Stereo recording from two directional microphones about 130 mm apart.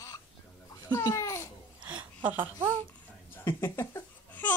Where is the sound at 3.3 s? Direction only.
20° left (ahead or behind).